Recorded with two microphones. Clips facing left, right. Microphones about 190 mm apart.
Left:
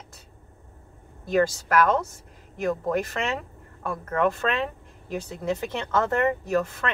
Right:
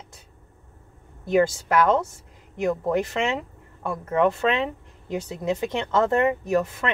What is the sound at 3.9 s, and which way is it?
Speech, 20° right (ahead or behind).